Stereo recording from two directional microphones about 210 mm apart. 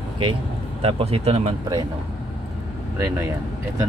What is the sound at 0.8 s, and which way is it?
Speech, 25° right (ahead or behind).